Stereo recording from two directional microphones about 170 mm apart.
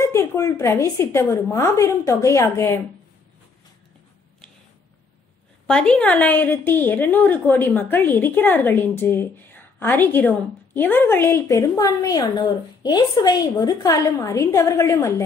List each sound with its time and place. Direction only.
0.0 s a woman's voice: 15° left (ahead or behind)
5.7 s a woman's voice: 5° left (ahead or behind)